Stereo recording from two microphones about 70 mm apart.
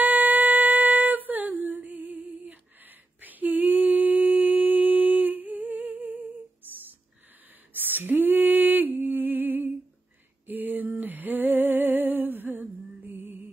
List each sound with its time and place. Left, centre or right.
0.0 s singing: right
3.2 s a sound: right
10.4 s female singing: right